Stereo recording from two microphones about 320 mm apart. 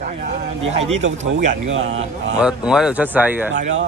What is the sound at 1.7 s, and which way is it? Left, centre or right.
Speech, right.